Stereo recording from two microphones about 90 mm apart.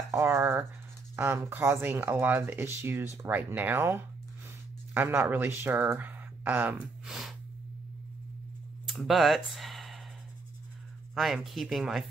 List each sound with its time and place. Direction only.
0.1 s speech: 30° right (ahead or behind)
7.1 s snort: centre (ahead or behind)
8.8 s speech: centre (ahead or behind)
11.4 s speech: centre (ahead or behind)